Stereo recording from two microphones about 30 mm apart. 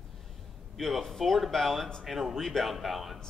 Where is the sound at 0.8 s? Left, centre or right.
Centre.